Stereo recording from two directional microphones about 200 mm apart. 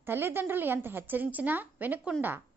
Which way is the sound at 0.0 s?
10° right (ahead or behind).